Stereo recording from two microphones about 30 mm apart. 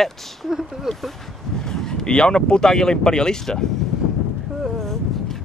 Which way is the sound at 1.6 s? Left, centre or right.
Centre.